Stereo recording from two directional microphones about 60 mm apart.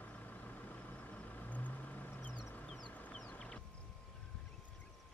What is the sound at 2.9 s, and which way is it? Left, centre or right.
Chicken, left.